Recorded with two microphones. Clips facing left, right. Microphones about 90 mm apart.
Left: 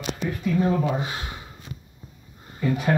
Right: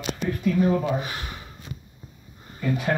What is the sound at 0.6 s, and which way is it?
Speech, 20° left (ahead or behind).